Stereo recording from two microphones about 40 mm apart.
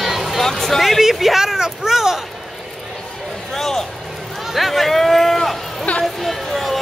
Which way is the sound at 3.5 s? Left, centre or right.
Centre.